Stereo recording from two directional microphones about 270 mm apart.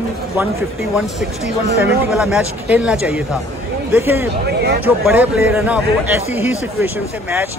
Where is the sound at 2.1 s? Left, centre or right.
Centre.